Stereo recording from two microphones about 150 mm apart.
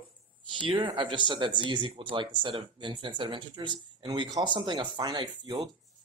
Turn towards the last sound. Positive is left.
turn(degrees=-30)  # may be behind; listen again after turning